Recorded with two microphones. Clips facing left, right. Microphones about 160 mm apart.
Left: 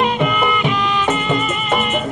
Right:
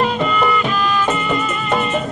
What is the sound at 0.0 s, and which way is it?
Music, 15° left (ahead or behind).